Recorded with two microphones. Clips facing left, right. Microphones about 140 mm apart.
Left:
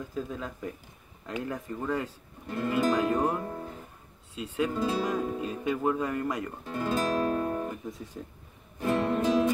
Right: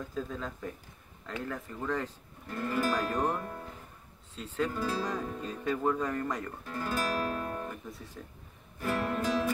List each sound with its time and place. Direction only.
0.1 s speech: 10° left (ahead or behind)
6.6 s music: 20° left (ahead or behind)
8.2 s speech: 20° left (ahead or behind)
8.7 s music: 25° left (ahead or behind)